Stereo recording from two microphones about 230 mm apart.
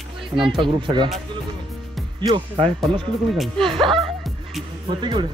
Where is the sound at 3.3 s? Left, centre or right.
Centre.